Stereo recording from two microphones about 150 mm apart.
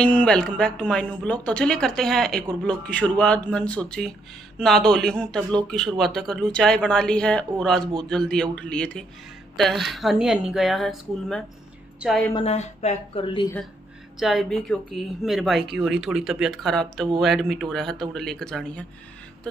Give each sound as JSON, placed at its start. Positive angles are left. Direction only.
{"t": 0.0, "sound": "speech", "side_deg": 5}
{"t": 12.4, "sound": "speech", "side_deg": 45}
{"t": 14.2, "sound": "speech", "side_deg": 0}